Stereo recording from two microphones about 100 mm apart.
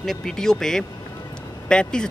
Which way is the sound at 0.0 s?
5° left (ahead or behind).